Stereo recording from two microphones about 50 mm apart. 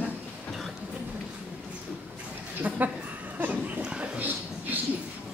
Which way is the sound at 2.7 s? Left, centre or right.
Right.